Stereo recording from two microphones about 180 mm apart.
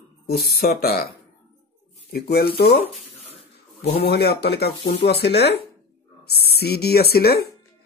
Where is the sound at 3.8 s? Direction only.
35° left (ahead or behind).